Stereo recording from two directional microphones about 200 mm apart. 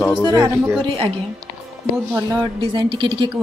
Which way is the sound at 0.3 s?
15° right (ahead or behind).